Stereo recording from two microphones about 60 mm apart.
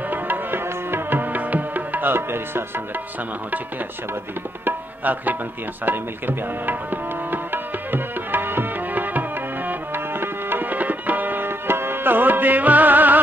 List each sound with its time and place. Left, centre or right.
0.1 s music: right
4.6 s tabla: right